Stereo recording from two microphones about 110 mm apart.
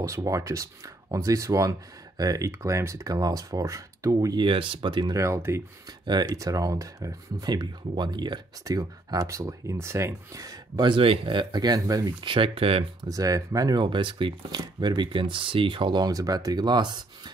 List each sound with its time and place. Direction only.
0.0 s speech: 30° right (ahead or behind)
4.4 s speech: 50° right (ahead or behind)
5.1 s speech: 25° right (ahead or behind)
6.0 s speech: 35° right (ahead or behind)
10.9 s speech: 55° right (ahead or behind); by 12.3 s 35° right (ahead or behind)
12.3 s speech: 55° right (ahead or behind)
13.0 s speech: 35° right (ahead or behind)